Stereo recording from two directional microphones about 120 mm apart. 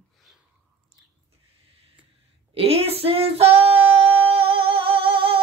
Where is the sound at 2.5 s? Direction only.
55° right (ahead or behind).